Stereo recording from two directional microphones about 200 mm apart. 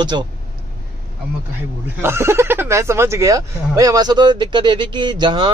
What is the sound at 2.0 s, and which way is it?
Speech, 10° right (ahead or behind).